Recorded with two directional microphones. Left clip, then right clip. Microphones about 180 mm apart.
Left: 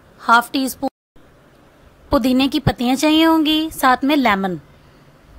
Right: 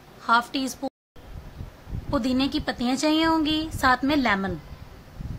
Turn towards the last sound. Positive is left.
turn(degrees=45)  # may be behind; listen again after turning